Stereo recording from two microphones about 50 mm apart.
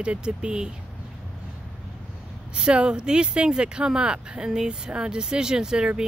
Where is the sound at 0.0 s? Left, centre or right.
Centre.